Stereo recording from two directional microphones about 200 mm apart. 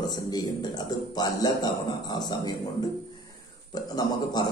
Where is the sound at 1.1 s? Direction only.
20° left (ahead or behind).